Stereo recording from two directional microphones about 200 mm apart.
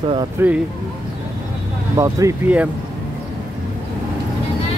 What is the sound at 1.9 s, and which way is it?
Speech, 15° right (ahead or behind).